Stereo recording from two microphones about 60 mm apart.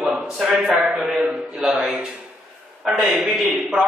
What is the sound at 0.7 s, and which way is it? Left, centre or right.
A man's voice, centre.